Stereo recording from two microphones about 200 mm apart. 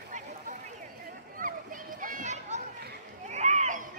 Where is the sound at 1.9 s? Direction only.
40° right (ahead or behind).